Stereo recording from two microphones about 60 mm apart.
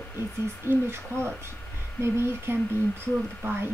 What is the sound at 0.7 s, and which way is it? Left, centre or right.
Speech, right.